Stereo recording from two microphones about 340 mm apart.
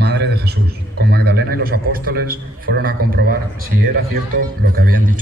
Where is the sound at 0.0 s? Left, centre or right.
Right.